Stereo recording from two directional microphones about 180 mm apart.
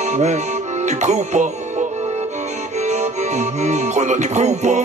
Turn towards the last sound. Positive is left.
turn(degrees=-40)  # may be behind; listen again after turning